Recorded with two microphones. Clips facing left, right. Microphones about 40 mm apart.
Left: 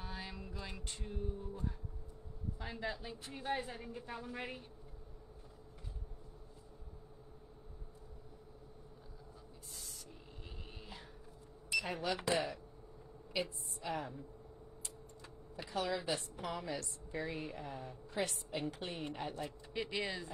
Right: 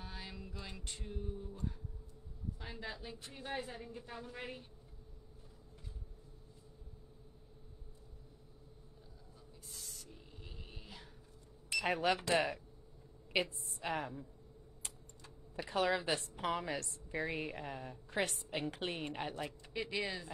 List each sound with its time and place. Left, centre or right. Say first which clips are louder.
0.0 s music: left 2 dB; centre
1.5 s a woman's voice: left 1 dB; centre
9.7 s a sound: right 1 dB; centre
11.8 s speech: right 10 dB; right
13.3 s a woman's voice: right 3 dB; right
15.7 s a woman's voice: right 3 dB; right
19.7 s a woman's voice: even; centre